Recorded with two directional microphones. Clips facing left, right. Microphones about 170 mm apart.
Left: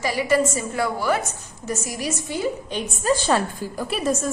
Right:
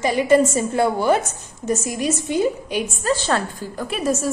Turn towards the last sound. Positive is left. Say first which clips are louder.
# right 1 dB
turn(degrees=-5)  # may be behind; listen again after turning